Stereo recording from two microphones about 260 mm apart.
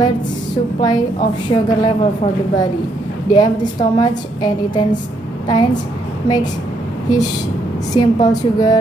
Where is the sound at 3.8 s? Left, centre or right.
Centre.